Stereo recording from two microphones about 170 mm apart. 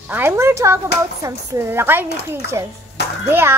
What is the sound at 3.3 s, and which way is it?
Speech, 15° right (ahead or behind).